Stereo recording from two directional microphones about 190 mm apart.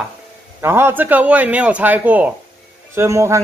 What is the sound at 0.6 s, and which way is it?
A man's voice, 15° right (ahead or behind).